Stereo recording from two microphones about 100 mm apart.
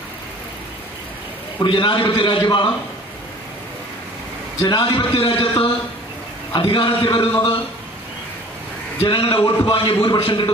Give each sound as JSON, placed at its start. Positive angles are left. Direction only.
{"t": 1.6, "sound": "a man's voice", "side_deg": 55}
{"t": 4.9, "sound": "a man's voice", "side_deg": 60}
{"t": 9.0, "sound": "a man's voice", "side_deg": 60}